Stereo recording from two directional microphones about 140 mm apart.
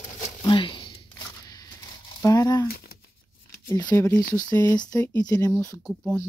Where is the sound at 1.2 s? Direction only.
25° left (ahead or behind).